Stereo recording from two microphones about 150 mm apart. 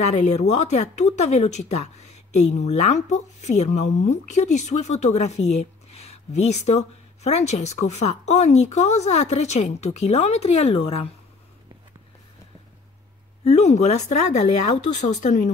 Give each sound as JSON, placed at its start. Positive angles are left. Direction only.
{"t": 0.0, "sound": "speech", "side_deg": 50}
{"t": 13.4, "sound": "speech", "side_deg": 45}